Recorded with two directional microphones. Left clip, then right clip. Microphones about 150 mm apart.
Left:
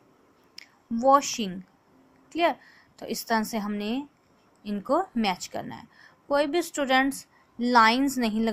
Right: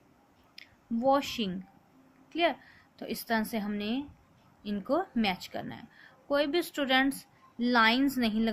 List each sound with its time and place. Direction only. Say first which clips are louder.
0.6 s a woman's voice: left 4 dB; 15° left (ahead or behind)